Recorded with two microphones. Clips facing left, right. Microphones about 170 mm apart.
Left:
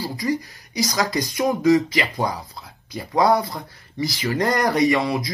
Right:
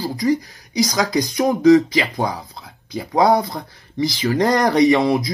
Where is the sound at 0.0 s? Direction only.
15° right (ahead or behind).